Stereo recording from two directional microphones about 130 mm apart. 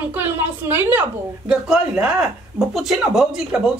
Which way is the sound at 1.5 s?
5° right (ahead or behind).